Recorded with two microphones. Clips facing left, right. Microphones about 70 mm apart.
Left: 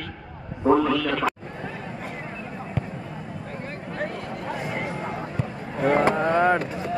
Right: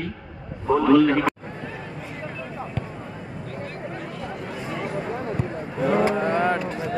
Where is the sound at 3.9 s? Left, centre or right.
Left.